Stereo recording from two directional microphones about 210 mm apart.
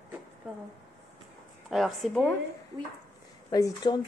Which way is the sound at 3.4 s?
15° left (ahead or behind).